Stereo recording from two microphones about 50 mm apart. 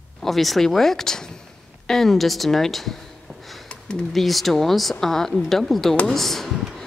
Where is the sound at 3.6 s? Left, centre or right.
Left.